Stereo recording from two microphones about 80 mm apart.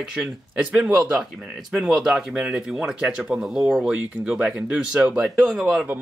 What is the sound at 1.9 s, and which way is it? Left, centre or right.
Speech, centre.